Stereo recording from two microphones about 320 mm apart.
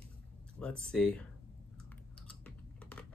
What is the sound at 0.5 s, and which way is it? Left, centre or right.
Speech, centre.